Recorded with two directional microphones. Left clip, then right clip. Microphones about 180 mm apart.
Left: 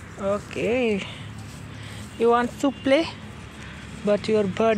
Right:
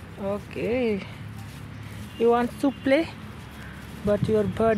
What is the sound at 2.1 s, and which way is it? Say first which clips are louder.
Speech: left 1 dB; 5° right (ahead or behind).